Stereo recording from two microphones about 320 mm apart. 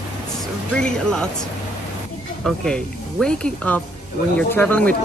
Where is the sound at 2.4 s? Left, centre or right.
Centre.